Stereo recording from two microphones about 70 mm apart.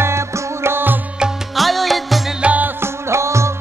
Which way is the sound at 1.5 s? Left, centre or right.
Centre.